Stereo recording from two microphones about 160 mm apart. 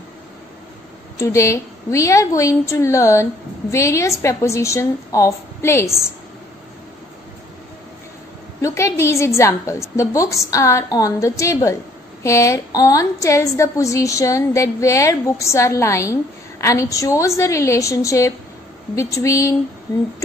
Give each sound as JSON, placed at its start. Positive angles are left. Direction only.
{"t": 1.1, "sound": "speech", "side_deg": 20}
{"t": 8.5, "sound": "a woman's voice", "side_deg": 20}